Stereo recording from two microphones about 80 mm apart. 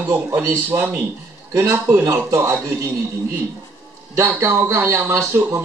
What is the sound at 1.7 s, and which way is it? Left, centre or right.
A man's voice, right.